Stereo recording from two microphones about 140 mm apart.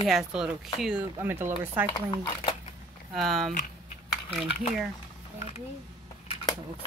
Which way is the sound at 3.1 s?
Centre (ahead or behind).